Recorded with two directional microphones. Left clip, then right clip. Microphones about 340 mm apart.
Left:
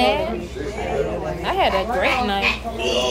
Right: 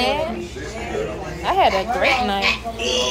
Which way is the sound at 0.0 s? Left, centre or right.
Centre.